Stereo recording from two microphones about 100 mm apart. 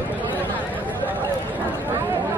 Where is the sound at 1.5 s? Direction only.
20° right (ahead or behind).